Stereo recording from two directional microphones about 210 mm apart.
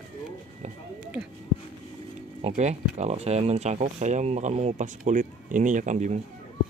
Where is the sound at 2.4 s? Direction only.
30° right (ahead or behind).